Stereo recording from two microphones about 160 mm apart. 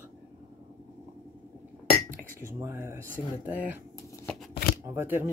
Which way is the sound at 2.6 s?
15° right (ahead or behind).